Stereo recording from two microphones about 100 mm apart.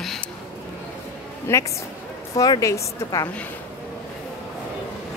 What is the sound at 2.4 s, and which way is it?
Speech, 35° left (ahead or behind).